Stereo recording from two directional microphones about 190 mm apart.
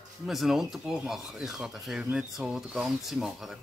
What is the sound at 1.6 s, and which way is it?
Speech, 5° right (ahead or behind).